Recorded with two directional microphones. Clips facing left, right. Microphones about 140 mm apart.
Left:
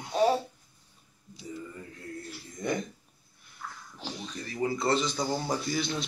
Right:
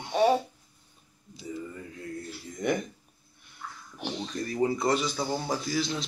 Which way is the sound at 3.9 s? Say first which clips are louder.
Right 6 dB; 20° right (ahead or behind).